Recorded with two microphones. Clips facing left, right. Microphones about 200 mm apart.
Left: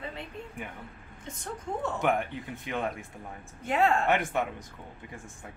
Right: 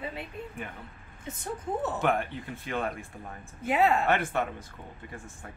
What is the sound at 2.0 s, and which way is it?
Speech, 15° left (ahead or behind).